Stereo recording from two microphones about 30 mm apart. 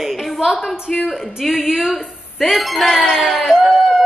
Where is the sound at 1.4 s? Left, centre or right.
Centre.